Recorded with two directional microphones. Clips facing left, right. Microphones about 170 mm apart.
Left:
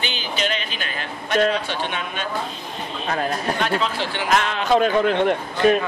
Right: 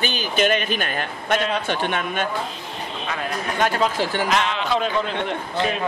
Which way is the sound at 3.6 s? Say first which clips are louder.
Right 7 dB; 45° right (ahead or behind).